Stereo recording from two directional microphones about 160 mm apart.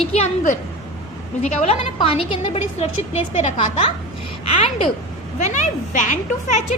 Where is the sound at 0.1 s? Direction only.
45° left (ahead or behind).